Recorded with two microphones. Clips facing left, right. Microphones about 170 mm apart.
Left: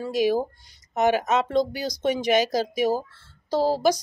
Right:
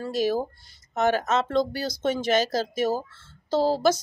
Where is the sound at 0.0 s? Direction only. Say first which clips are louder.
Left 2 dB; 15° left (ahead or behind).